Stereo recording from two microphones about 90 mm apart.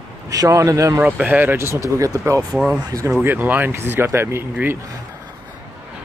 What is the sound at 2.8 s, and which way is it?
Speech, 45° right (ahead or behind).